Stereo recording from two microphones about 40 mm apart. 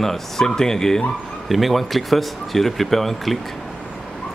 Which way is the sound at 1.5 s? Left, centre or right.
Centre.